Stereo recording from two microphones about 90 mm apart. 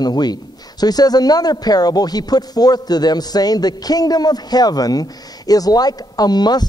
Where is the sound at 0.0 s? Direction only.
50° left (ahead or behind).